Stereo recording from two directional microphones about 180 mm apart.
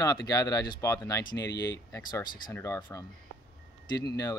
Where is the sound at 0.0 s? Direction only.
20° left (ahead or behind).